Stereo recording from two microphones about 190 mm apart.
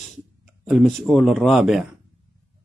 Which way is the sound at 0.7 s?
Centre (ahead or behind).